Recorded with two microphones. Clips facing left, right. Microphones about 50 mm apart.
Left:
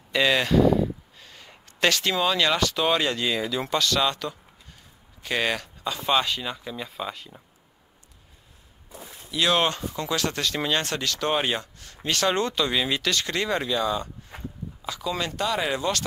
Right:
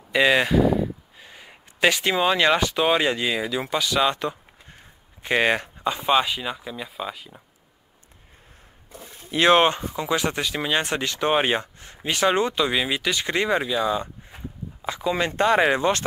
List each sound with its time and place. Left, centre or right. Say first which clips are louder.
0.1 s speech: right 3 dB; centre
9.2 s speech: right 6 dB; right
9.7 s speech: right 4 dB; centre
14.8 s speech: right 5 dB; right